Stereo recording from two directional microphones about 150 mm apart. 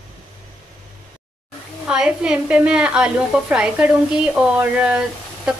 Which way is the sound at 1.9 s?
5° right (ahead or behind).